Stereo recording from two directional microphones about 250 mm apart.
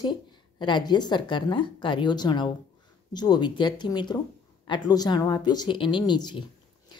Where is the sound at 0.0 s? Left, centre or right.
Centre.